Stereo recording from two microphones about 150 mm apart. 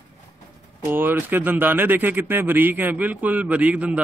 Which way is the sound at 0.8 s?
15° right (ahead or behind).